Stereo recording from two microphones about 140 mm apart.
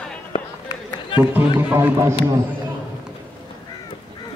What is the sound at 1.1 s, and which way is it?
Speech, 15° right (ahead or behind).